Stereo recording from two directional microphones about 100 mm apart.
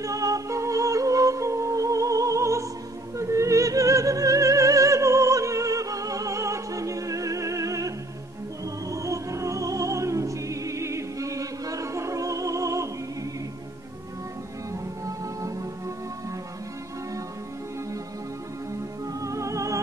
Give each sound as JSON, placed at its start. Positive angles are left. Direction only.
{"t": 0.0, "sound": "music", "side_deg": -35}
{"t": 3.2, "sound": "opera", "side_deg": -30}
{"t": 8.8, "sound": "music", "side_deg": -35}
{"t": 14.7, "sound": "music", "side_deg": -35}
{"t": 19.1, "sound": "music", "side_deg": -30}